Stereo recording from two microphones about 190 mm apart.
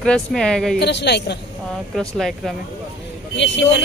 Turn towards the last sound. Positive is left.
turn(degrees=70)  # may be behind; listen again after turning